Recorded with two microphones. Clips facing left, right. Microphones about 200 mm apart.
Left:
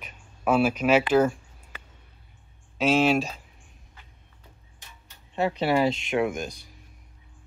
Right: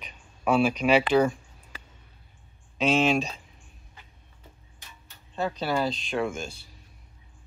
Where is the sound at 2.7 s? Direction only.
5° left (ahead or behind).